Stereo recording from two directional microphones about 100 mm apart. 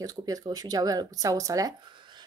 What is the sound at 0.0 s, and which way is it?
A woman's voice, 40° right (ahead or behind).